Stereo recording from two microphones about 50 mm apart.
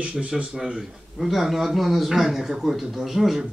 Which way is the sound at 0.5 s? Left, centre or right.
Centre.